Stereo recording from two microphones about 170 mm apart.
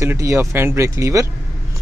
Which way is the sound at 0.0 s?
15° right (ahead or behind).